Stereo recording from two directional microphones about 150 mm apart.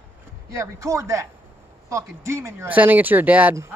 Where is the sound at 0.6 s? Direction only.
20° right (ahead or behind).